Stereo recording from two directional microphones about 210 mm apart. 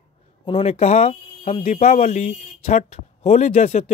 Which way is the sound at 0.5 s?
30° left (ahead or behind).